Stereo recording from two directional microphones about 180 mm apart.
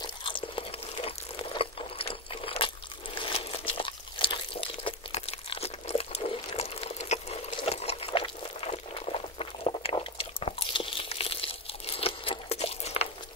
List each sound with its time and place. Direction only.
0.0 s chewing: 30° left (ahead or behind)
0.9 s crunch: 30° left (ahead or behind)